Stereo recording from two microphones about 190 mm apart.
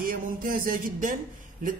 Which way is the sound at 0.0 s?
50° right (ahead or behind).